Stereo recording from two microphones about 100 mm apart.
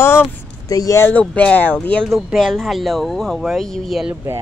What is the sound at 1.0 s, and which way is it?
Speech, 15° left (ahead or behind).